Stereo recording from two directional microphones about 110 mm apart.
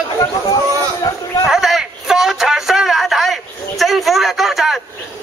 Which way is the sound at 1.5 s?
5° right (ahead or behind).